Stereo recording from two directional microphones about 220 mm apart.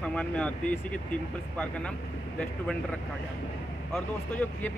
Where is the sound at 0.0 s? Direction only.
5° left (ahead or behind).